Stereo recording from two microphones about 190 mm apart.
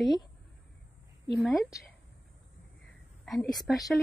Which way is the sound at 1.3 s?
Centre (ahead or behind).